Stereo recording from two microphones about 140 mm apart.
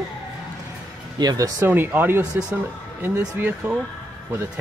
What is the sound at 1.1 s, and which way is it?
Speech, 25° right (ahead or behind).